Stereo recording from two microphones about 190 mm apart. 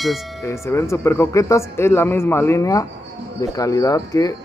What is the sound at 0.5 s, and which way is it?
A man's voice, 15° left (ahead or behind).